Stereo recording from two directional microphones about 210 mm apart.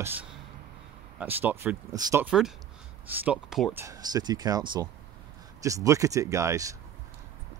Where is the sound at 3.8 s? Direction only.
15° right (ahead or behind).